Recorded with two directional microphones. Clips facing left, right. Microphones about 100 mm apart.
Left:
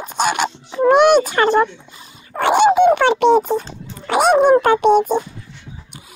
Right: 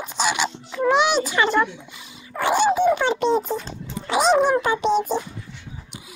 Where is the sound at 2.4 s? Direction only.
65° left (ahead or behind).